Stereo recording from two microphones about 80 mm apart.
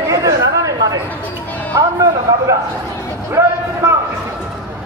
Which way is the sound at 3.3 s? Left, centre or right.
Right.